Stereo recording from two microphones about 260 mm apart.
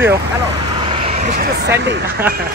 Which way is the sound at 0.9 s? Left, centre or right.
Right.